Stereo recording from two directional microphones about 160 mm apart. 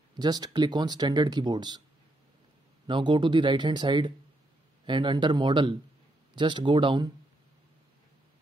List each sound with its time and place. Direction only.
0.2 s speech: 25° right (ahead or behind)
2.9 s speech: 30° right (ahead or behind)